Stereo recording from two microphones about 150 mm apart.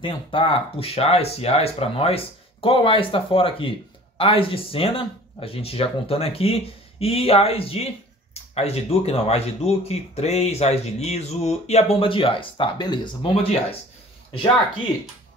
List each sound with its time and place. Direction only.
0.0 s speech: 35° left (ahead or behind)